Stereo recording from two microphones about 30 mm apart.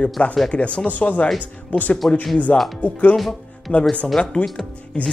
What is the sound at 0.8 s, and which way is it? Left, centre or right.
Speech, left.